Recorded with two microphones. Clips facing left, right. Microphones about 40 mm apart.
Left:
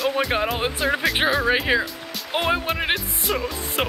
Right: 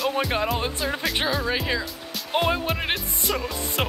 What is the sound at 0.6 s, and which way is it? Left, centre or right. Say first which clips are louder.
Speech: left 4 dB; left.